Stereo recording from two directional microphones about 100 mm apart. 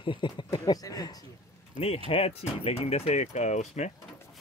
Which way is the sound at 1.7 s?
75° left (ahead or behind).